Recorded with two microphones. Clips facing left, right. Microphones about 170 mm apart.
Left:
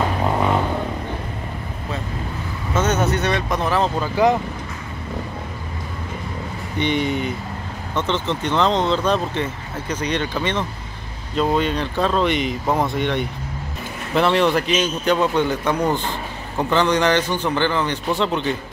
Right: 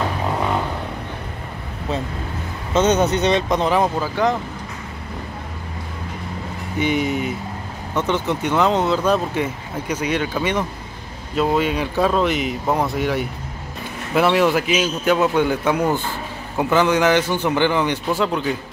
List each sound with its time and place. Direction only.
2.7 s speech: 20° right (ahead or behind)
6.8 s speech: 5° right (ahead or behind)
18.1 s speech: 5° right (ahead or behind)